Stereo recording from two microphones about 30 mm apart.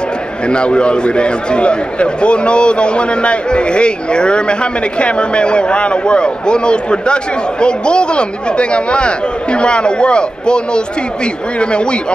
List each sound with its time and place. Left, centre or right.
0.5 s a man's voice: left